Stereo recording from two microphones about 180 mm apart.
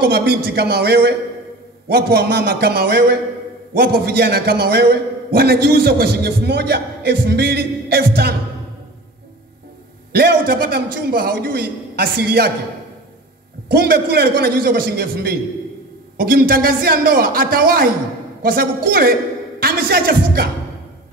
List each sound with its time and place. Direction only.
0.0 s a man's voice: 60° right (ahead or behind)
10.1 s a man's voice: 55° right (ahead or behind)
13.7 s a man's voice: 60° right (ahead or behind)